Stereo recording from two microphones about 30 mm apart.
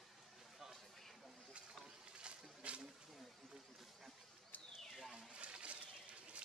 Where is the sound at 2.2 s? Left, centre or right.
Right.